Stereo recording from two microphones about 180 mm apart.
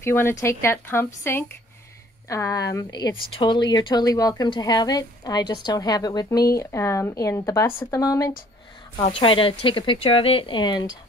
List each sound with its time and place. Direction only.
0.0 s speech: 15° left (ahead or behind)
9.0 s speech: 30° left (ahead or behind)